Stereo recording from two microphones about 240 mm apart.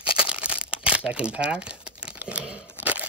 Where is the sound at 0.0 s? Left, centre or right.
Left.